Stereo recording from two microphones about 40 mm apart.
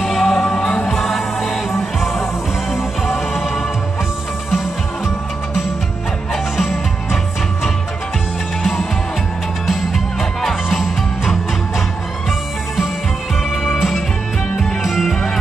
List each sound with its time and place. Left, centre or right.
0.0 s music: centre
0.5 s music: centre
0.9 s music: centre
6.3 s music: centre
9.7 s music: centre
12.3 s music: centre